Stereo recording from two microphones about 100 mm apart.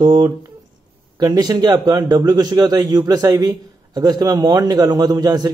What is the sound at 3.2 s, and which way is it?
Speech, 30° right (ahead or behind).